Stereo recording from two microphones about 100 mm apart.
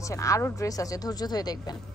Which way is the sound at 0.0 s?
30° left (ahead or behind).